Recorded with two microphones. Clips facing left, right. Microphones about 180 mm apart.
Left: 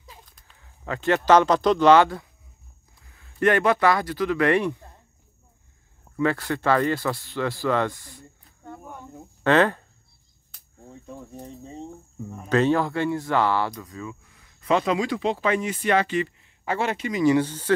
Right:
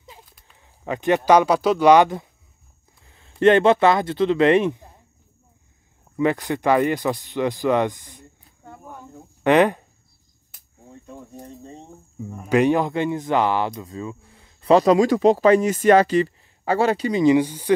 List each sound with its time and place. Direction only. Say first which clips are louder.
0.6 s speech: right 4 dB; 20° right (ahead or behind)
6.1 s speech: right 3 dB; 20° right (ahead or behind)
9.4 s speech: right 3 dB; 15° right (ahead or behind)
10.5 s cricket: even; 5° right (ahead or behind)
11.6 s speech: left 3 dB; 5° right (ahead or behind)
12.5 s speech: right 3 dB; 15° right (ahead or behind); by 17.2 s 35° right (ahead or behind)
17.2 s speech: right 2 dB; 15° right (ahead or behind)